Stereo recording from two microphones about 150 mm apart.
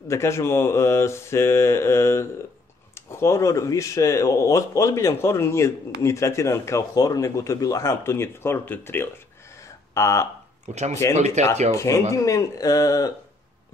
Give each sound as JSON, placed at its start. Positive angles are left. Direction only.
{"t": 0.1, "sound": "speech", "side_deg": 20}
{"t": 10.6, "sound": "speech", "side_deg": -50}
{"t": 11.7, "sound": "speech", "side_deg": 20}